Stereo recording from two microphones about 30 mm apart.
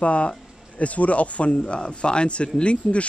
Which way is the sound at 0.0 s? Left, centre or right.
Left.